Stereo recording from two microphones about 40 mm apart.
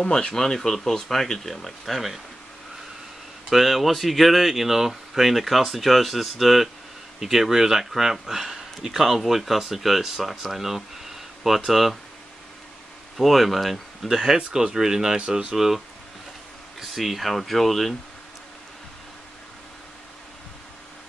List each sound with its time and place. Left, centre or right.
0.0 s speech: left
0.3 s speech: centre
3.4 s speech: centre
13.2 s speech: centre; by 15.4 s right
15.5 s speech: centre
16.8 s speech: centre